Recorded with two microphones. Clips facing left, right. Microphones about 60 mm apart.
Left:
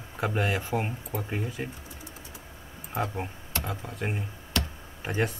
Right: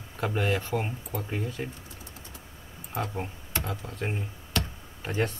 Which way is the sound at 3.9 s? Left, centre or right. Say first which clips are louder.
Even; centre.